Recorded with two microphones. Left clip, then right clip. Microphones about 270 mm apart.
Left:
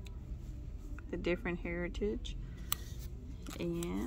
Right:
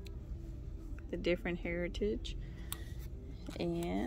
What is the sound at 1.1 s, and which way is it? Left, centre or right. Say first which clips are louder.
Speech: right 1 dB; centre.